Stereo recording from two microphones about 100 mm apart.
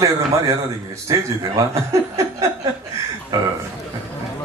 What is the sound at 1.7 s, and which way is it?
Chuckle, 30° right (ahead or behind).